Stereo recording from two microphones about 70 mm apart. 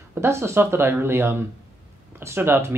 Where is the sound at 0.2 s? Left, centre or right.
Right.